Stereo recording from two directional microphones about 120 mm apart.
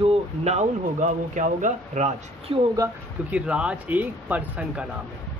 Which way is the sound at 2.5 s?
50° right (ahead or behind).